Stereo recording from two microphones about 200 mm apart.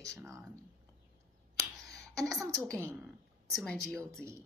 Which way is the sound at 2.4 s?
15° right (ahead or behind).